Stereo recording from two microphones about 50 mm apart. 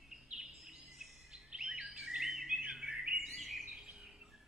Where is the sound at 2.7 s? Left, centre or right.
Centre.